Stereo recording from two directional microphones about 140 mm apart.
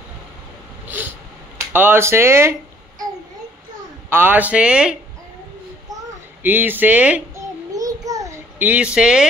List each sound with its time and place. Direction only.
1.7 s speech: 15° right (ahead or behind)
4.1 s speech: 15° right (ahead or behind)
6.4 s speech: 15° right (ahead or behind)
7.3 s child singing: 25° right (ahead or behind)
8.5 s speech: 10° right (ahead or behind)